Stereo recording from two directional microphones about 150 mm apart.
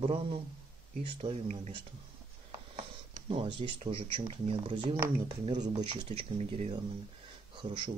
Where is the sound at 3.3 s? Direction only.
35° right (ahead or behind).